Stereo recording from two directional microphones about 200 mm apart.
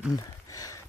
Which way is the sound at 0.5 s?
15° left (ahead or behind).